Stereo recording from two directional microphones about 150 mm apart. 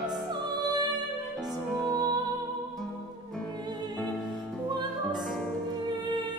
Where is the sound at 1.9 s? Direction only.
25° right (ahead or behind).